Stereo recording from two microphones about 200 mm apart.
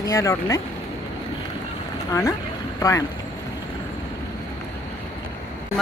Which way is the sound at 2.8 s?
15° left (ahead or behind).